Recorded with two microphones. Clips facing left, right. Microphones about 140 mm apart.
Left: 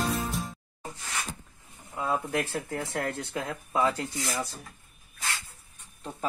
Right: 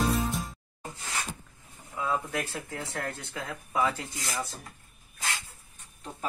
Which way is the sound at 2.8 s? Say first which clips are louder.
Left 4 dB; 25° left (ahead or behind).